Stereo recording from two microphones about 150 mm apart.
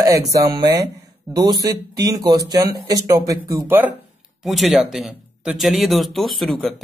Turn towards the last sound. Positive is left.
turn(degrees=0)  # may be behind; listen again after turning